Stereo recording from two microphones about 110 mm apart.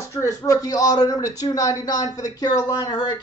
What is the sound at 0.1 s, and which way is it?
A man's voice, 30° left (ahead or behind).